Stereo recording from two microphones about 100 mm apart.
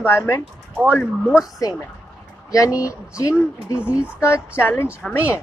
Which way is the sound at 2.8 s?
30° left (ahead or behind).